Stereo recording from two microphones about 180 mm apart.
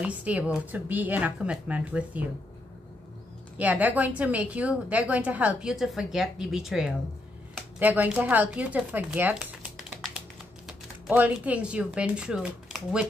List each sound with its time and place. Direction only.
0.0 s a woman's voice: 5° right (ahead or behind)
3.5 s a woman's voice: 10° right (ahead or behind)